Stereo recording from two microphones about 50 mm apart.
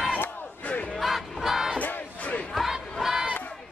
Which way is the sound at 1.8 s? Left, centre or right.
Left.